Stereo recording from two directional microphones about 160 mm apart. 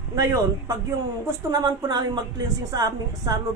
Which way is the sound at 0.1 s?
20° right (ahead or behind).